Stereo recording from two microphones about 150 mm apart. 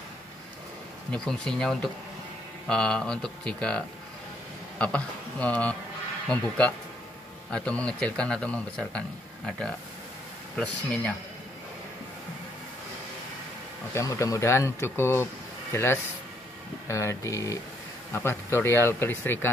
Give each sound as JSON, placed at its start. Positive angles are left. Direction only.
{"t": 1.1, "sound": "speech", "side_deg": 5}
{"t": 13.9, "sound": "speech", "side_deg": 20}